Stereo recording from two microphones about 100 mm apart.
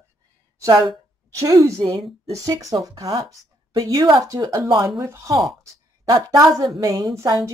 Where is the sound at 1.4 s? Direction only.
35° right (ahead or behind).